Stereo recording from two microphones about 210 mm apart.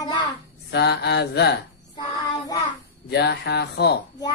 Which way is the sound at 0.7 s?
55° left (ahead or behind).